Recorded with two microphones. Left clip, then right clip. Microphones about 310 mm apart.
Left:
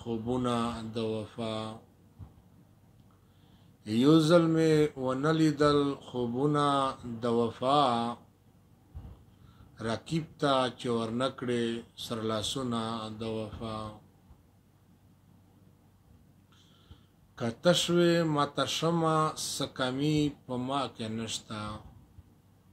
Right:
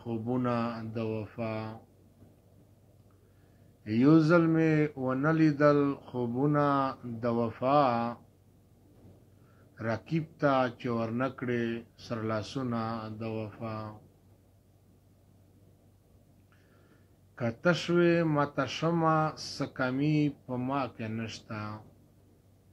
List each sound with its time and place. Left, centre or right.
0.0 s speech: centre
3.8 s speech: centre
10.0 s speech: centre
17.4 s speech: centre
19.3 s speech: left